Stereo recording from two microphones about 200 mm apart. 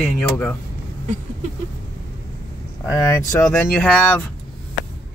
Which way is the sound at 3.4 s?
5° left (ahead or behind).